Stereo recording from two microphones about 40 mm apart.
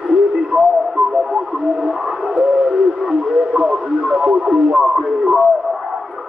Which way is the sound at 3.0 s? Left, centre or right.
Centre.